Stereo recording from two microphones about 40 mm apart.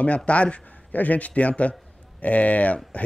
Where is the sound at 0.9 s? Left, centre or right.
Left.